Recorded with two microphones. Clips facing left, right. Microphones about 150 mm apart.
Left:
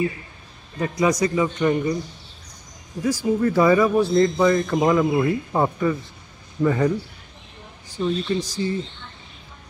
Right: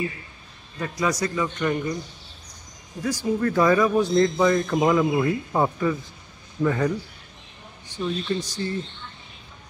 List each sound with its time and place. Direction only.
0.7 s speech: 15° left (ahead or behind)
3.0 s speech: 10° left (ahead or behind)
8.0 s speech: 10° left (ahead or behind)